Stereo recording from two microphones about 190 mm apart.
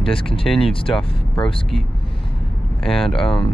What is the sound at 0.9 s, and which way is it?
Speech, 5° left (ahead or behind).